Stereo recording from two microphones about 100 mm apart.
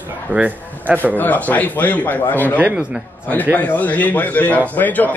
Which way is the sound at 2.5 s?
15° right (ahead or behind).